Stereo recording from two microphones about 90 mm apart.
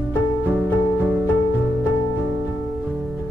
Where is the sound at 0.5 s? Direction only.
15° right (ahead or behind).